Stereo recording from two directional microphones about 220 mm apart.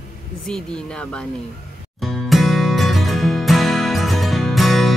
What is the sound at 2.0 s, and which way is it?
Music, centre (ahead or behind).